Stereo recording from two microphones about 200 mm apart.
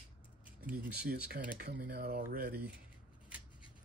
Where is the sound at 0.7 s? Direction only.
5° right (ahead or behind).